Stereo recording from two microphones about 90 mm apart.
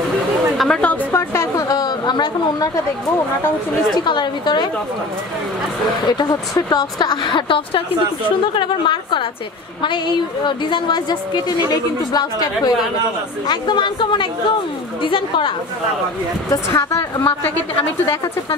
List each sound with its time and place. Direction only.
0.6 s a woman's voice: 5° left (ahead or behind)
1.1 s music: 30° left (ahead or behind)
1.7 s a sound: 50° left (ahead or behind)
3.9 s speech: 55° left (ahead or behind)
6.0 s a woman's voice: 50° left (ahead or behind)
7.1 s a woman's voice: 65° left (ahead or behind)
16.4 s speech: 40° left (ahead or behind)